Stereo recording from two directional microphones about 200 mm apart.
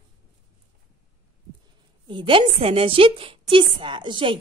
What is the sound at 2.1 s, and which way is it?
A woman's voice, 25° right (ahead or behind).